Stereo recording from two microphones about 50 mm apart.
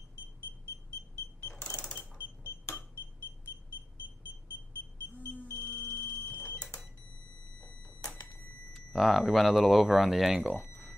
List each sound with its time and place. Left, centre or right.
1.6 s cash register: left
5.3 s alarm: left
6.6 s cash register: centre
8.7 s speech: centre
10.4 s speech: right